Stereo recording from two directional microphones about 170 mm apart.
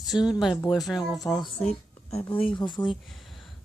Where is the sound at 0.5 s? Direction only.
20° left (ahead or behind).